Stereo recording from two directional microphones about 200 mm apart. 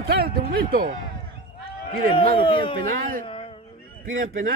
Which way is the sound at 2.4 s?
25° left (ahead or behind).